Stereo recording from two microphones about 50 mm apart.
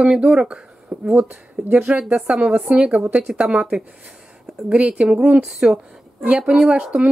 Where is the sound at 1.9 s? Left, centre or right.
Right.